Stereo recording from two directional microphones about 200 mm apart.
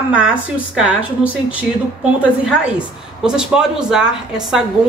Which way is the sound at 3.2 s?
5° right (ahead or behind).